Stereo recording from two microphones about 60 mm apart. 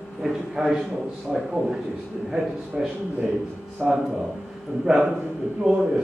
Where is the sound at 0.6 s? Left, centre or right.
Centre.